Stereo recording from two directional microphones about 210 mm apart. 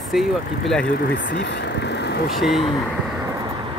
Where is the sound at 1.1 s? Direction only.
55° left (ahead or behind).